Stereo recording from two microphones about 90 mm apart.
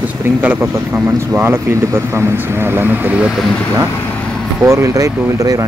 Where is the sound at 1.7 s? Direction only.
30° right (ahead or behind).